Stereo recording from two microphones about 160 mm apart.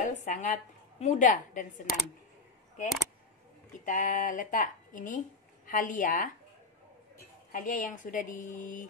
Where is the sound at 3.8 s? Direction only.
55° left (ahead or behind).